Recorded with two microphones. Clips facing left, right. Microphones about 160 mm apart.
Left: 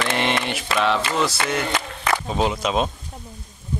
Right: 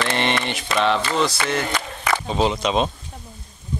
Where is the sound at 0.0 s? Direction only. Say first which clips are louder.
Even; 5° left (ahead or behind).